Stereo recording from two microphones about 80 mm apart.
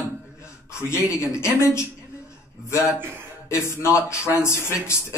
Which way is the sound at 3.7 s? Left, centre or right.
Left.